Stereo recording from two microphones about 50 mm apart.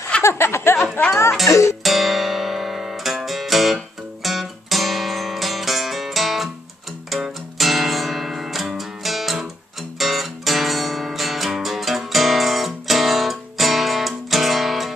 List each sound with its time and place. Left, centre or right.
0.2 s snicker: left
1.5 s speech: left
1.8 s music: centre
7.5 s music: centre